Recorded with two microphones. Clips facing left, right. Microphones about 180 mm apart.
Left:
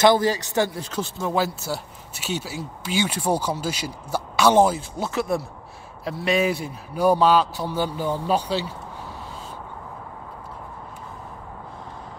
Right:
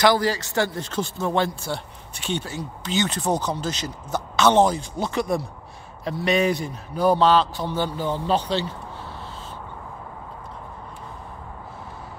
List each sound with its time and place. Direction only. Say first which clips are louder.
0.0 s speech: left 2 dB; 20° left (ahead or behind)
0.7 s speech: right 1 dB; 5° left (ahead or behind)